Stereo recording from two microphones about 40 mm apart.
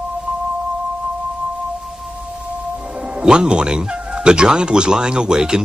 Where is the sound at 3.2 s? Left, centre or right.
Centre.